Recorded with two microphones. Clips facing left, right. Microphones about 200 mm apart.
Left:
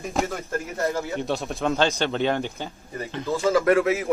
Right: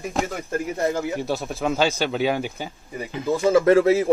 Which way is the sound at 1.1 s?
5° right (ahead or behind).